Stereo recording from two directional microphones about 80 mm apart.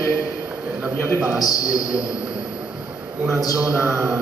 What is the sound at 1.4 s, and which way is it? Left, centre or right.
Speech, left.